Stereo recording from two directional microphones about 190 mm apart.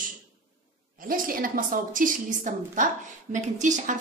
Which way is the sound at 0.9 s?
45° right (ahead or behind).